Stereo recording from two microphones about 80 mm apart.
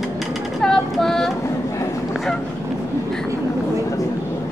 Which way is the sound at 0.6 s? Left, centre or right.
Centre.